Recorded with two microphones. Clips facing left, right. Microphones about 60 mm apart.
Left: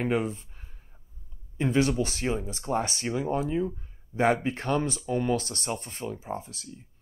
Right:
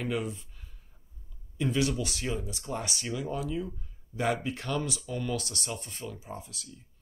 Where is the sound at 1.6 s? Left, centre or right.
Left.